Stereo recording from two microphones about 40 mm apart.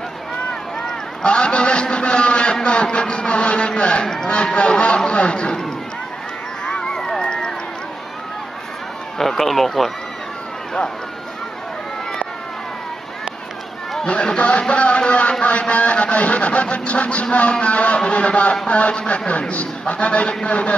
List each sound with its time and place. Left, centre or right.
0.8 s a sound: left
4.3 s a man's voice: left
6.6 s a sound: left
7.2 s run: centre
9.2 s speech: centre
14.0 s a man's voice: left
14.7 s music: left
15.4 s a man's voice: left